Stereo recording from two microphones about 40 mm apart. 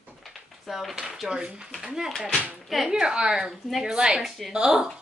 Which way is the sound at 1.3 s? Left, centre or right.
Right.